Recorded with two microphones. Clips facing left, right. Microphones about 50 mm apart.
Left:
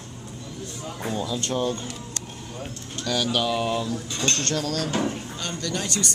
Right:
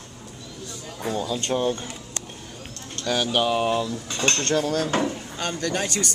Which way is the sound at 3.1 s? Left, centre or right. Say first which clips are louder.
Right 2 dB; right.